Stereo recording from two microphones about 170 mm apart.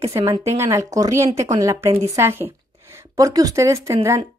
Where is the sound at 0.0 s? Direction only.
15° right (ahead or behind).